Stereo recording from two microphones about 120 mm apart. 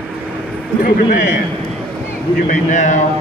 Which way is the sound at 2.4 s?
80° left.